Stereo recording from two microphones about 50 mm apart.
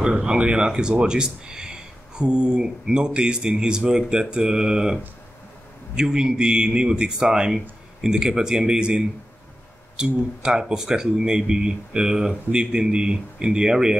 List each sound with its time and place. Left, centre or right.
0.0 s speech: centre
5.9 s speech: centre